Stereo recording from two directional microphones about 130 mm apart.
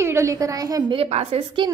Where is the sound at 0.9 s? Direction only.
50° right (ahead or behind).